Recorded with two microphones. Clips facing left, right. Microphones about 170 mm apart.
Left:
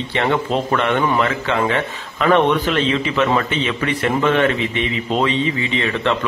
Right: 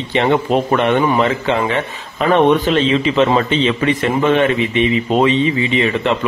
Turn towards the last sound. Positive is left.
turn(degrees=-15)  # may be behind; listen again after turning